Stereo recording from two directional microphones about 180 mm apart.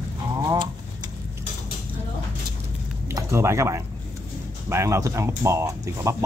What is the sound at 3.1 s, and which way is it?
Speech, 15° right (ahead or behind).